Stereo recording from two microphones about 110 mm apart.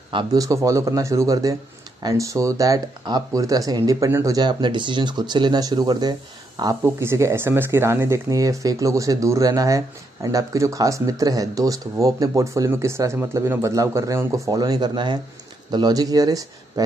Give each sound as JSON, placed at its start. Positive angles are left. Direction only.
{"t": 0.1, "sound": "a man's voice", "side_deg": -45}
{"t": 0.4, "sound": "speech", "side_deg": -30}
{"t": 4.4, "sound": "speech", "side_deg": -45}
{"t": 6.8, "sound": "speech", "side_deg": -25}